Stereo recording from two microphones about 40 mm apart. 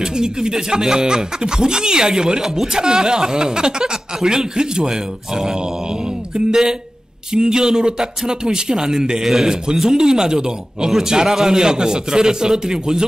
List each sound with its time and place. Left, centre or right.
0.0 s speech: centre